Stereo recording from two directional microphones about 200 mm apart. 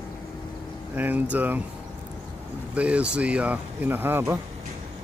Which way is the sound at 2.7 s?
5° right (ahead or behind).